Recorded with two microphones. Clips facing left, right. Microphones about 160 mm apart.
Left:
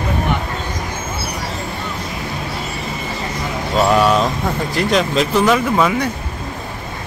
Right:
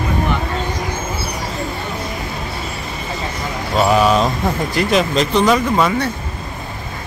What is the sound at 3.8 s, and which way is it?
Speech, 5° right (ahead or behind).